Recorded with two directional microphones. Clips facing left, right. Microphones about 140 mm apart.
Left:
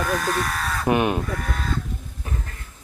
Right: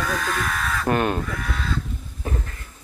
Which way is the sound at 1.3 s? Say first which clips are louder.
Left 1 dB; 45° left (ahead or behind).